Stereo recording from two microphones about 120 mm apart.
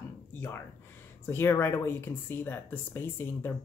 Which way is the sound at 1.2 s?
20° left (ahead or behind).